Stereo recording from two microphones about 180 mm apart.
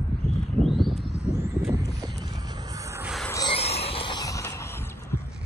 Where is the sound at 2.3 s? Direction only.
25° right (ahead or behind).